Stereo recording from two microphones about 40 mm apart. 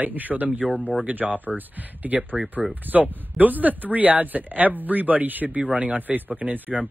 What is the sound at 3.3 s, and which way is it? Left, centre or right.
Speech, right.